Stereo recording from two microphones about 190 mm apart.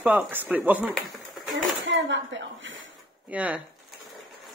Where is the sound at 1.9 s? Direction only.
75° right (ahead or behind).